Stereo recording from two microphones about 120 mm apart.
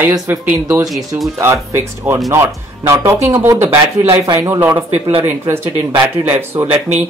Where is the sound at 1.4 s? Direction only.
20° right (ahead or behind).